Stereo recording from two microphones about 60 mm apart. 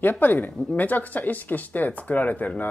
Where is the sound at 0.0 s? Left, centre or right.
Left.